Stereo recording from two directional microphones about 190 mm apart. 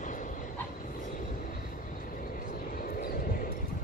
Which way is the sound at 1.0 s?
45° left (ahead or behind).